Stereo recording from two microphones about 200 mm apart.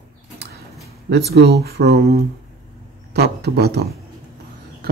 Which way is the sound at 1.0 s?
55° right (ahead or behind).